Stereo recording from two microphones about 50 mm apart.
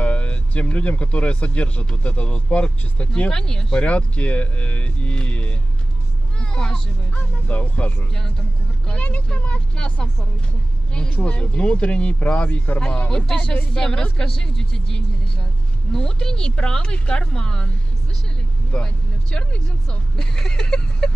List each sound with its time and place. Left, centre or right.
0.0 s speech: left
3.3 s speech: centre
3.8 s speech: left
7.2 s speech: left; by 21.1 s centre